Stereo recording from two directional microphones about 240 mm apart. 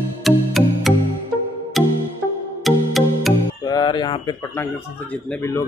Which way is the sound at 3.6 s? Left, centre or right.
Centre.